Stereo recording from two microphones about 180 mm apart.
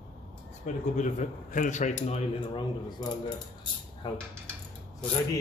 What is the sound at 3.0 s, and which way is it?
Speech, 25° left (ahead or behind).